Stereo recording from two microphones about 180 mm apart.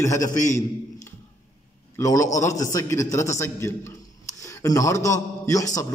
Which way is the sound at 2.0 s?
20° left (ahead or behind).